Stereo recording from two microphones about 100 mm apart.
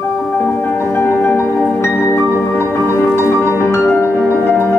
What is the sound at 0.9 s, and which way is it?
Music, 20° left (ahead or behind).